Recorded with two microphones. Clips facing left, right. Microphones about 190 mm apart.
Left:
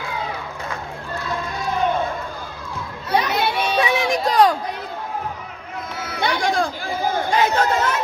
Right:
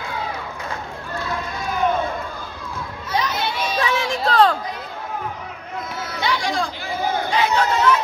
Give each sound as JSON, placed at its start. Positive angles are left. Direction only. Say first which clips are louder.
{"t": 3.1, "sound": "children playing", "louder": "left 4 dB", "side_deg": 60}
{"t": 3.8, "sound": "a sound", "louder": "even", "side_deg": 15}
{"t": 6.1, "sound": "chatter", "louder": "left 3 dB", "side_deg": 50}